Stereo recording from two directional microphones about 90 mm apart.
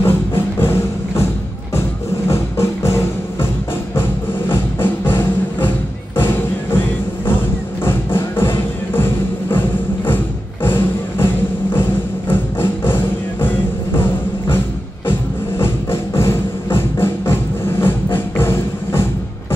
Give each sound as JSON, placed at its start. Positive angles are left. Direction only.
{"t": 0.0, "sound": "music", "side_deg": 25}
{"t": 4.5, "sound": "music", "side_deg": 25}
{"t": 15.0, "sound": "music", "side_deg": 25}